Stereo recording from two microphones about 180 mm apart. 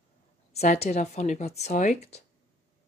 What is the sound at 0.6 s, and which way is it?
Speech, 40° left (ahead or behind).